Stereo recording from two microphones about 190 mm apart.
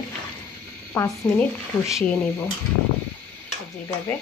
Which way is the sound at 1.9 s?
Centre (ahead or behind).